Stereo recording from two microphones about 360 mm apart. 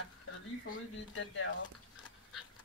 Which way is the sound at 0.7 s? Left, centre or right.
Left.